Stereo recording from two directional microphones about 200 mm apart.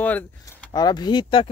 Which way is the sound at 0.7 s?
20° left (ahead or behind).